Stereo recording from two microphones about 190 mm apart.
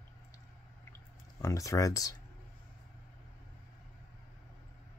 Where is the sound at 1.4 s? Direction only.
15° left (ahead or behind).